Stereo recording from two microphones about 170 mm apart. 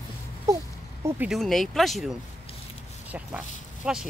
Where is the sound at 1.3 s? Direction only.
Centre (ahead or behind).